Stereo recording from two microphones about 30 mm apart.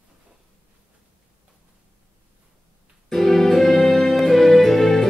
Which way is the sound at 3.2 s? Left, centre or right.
Centre.